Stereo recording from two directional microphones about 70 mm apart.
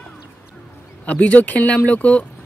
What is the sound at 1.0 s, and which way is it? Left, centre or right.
Speech, left.